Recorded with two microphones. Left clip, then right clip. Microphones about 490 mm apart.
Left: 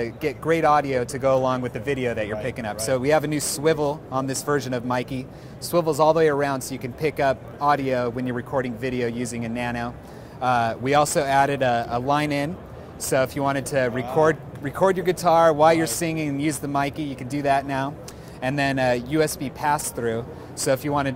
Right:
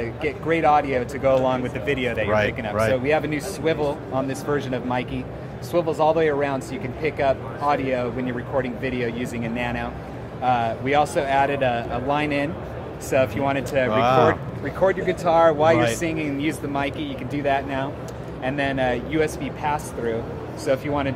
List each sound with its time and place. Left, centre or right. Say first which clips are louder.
0.0 s speech: even; left